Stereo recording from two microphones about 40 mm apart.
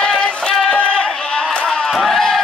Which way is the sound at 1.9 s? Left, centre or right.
Centre.